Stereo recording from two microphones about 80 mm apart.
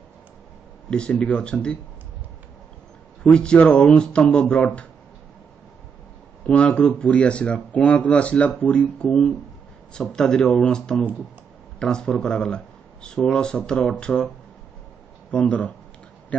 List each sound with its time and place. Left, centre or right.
0.8 s speech: centre
3.3 s speech: centre
6.4 s speech: centre
9.0 s speech: centre
15.3 s speech: centre